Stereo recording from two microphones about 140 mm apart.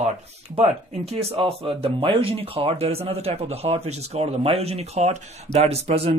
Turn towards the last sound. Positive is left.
turn(degrees=-45)  # may be behind; listen again after turning